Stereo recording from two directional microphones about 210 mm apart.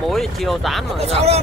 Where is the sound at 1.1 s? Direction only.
30° right (ahead or behind).